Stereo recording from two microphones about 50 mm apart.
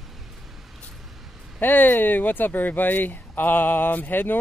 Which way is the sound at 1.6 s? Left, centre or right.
Left.